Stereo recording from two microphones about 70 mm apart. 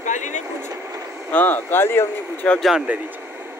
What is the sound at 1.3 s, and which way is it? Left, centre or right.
Speech, left.